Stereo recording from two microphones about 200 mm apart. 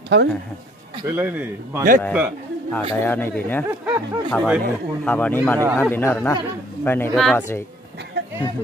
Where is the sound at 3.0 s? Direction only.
10° left (ahead or behind).